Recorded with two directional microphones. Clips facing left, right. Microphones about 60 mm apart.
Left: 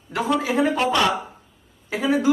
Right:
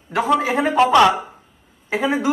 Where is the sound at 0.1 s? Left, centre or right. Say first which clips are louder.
Right 4 dB; right.